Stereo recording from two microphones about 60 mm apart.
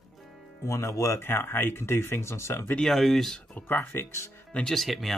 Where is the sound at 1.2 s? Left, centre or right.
Left.